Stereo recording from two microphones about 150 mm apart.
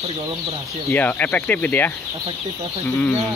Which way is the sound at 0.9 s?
10° left (ahead or behind).